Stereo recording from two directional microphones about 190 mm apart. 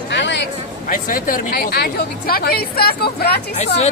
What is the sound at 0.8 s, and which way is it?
Speech, 45° left (ahead or behind).